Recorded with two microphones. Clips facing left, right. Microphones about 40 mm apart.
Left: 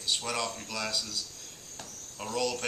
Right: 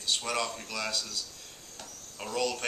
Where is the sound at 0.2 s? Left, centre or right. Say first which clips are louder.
Right 1 dB; centre.